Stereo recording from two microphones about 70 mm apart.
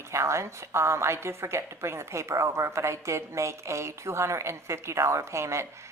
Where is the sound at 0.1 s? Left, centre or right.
Right.